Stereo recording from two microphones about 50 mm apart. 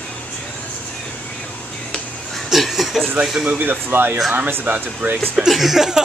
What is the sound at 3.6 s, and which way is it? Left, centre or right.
Speech, right.